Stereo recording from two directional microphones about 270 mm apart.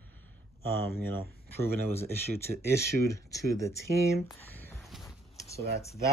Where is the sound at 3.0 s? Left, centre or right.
Centre.